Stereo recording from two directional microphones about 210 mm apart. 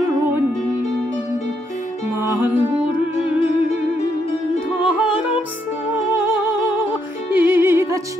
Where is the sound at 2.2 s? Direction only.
10° right (ahead or behind).